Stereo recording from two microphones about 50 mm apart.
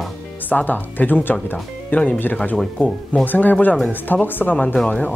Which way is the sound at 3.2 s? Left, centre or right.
Left.